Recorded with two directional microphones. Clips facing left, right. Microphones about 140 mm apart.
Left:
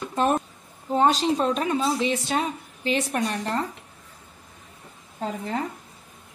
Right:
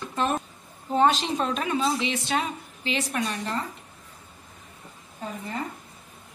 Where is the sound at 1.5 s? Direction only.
35° left (ahead or behind).